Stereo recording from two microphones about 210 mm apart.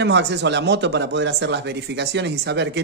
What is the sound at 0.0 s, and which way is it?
Speech, 55° right (ahead or behind).